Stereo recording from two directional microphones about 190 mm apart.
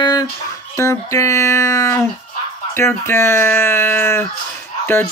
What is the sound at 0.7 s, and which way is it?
Speech, 15° left (ahead or behind).